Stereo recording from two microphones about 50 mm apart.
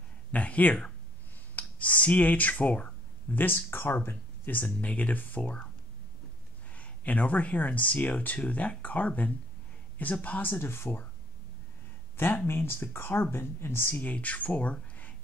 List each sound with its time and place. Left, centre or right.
0.3 s speech: left
1.5 s a sound: left
3.3 s speech: left
6.8 s speech: left
10.4 s speech: left
12.4 s speech: left
13.9 s speech: left